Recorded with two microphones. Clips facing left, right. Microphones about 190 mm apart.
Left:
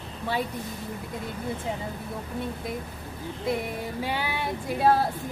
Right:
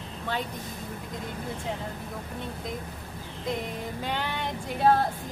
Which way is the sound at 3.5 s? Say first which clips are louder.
Left 2 dB; 10° left (ahead or behind).